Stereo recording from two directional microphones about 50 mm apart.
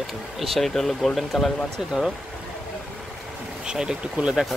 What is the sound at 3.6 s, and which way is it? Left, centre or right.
Speech, centre.